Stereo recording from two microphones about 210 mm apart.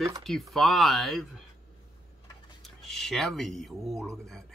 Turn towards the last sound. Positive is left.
turn(degrees=0)  # may be behind; listen again after turning